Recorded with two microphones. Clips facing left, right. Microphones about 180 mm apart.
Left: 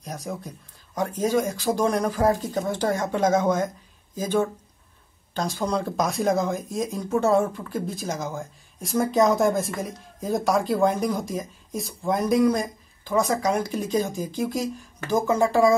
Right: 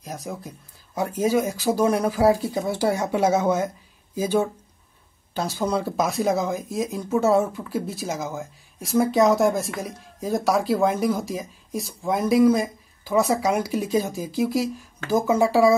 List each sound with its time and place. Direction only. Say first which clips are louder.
0.0 s speech: even; centre (ahead or behind)